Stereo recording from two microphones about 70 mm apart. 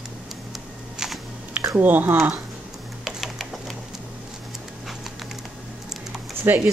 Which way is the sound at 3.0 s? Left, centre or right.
Centre.